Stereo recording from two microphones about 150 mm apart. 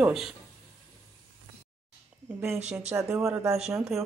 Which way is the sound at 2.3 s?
10° right (ahead or behind).